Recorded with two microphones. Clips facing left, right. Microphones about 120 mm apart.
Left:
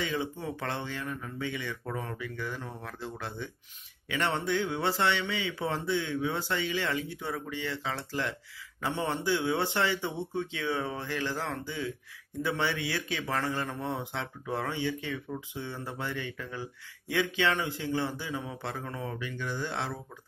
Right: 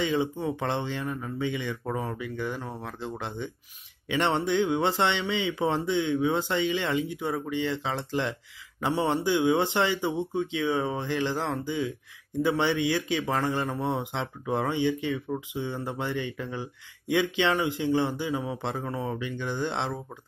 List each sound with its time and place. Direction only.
0.0 s a man's voice: 20° right (ahead or behind)